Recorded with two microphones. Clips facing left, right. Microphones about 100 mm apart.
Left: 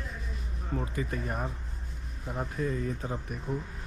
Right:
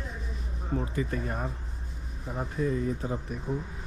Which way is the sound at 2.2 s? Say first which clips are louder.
Even; centre (ahead or behind).